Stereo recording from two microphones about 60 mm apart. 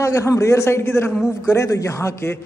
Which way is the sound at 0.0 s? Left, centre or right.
Left.